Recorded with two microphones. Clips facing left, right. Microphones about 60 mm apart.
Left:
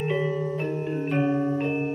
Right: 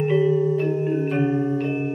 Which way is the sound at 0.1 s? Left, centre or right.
Centre.